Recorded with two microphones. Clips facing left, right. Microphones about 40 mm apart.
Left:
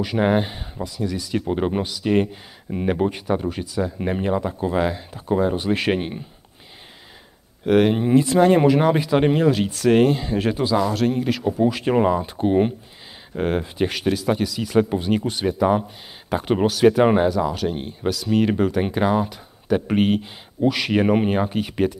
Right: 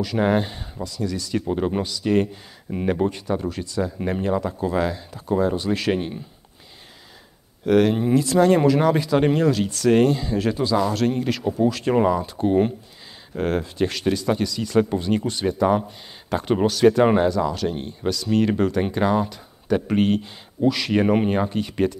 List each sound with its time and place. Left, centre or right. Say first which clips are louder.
0.0 s speech: left 1 dB; left
7.6 s speech: left 1 dB; left
10.8 s speech: left 1 dB; centre